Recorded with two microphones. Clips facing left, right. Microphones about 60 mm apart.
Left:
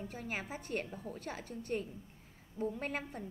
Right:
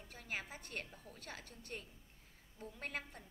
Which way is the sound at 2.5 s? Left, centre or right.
Left.